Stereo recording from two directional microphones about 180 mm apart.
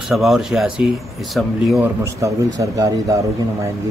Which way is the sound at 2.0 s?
15° right (ahead or behind).